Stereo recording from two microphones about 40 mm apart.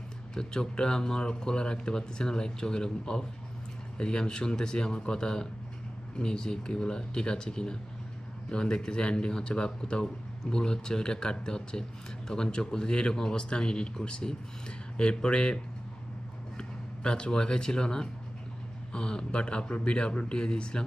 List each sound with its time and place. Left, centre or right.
0.3 s speech: centre